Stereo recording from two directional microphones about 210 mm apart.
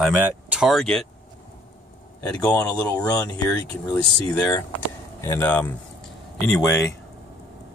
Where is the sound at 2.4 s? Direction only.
5° left (ahead or behind).